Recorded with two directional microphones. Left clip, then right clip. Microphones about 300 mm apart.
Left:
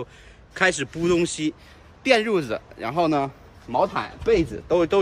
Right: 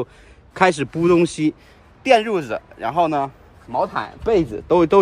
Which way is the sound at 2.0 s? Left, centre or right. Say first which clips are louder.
Right 4 dB; centre.